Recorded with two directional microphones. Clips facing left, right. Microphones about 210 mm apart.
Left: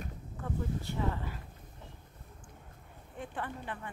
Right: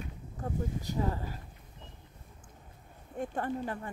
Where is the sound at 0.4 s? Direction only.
40° right (ahead or behind).